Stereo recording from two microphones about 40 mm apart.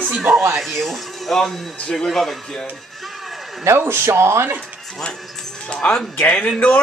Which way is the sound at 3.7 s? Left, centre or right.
Right.